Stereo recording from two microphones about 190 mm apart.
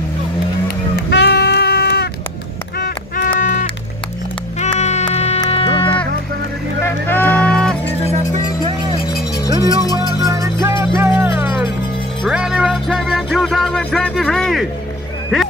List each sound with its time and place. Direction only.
0.9 s music: 60° left (ahead or behind)
2.8 s music: 45° left (ahead or behind); by 5.9 s 30° left (ahead or behind)
6.8 s music: 10° left (ahead or behind)
10.2 s music: 15° right (ahead or behind); by 14.7 s centre (ahead or behind)